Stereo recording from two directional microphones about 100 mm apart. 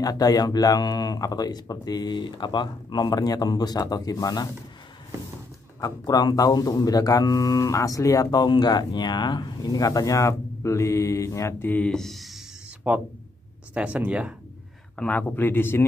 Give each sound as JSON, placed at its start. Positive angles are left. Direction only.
{"t": 0.0, "sound": "speech", "side_deg": 40}
{"t": 5.8, "sound": "speech", "side_deg": 40}
{"t": 11.7, "sound": "speech", "side_deg": 10}
{"t": 12.9, "sound": "speech", "side_deg": -15}
{"t": 15.0, "sound": "speech", "side_deg": 15}